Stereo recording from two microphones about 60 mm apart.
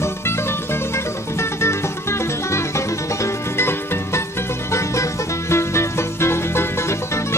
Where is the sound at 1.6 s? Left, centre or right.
Left.